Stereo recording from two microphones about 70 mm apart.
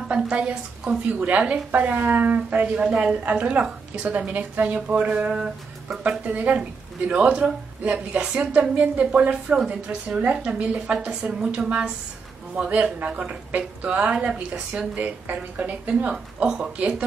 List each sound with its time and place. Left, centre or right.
0.1 s speech: centre